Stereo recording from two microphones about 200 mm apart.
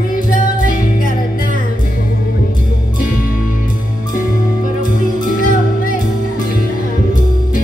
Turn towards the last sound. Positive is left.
turn(degrees=40)  # may be behind; listen again after turning